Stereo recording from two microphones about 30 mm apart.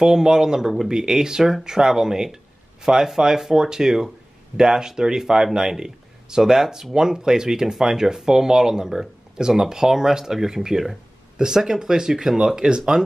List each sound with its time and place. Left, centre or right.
0.0 s speech: right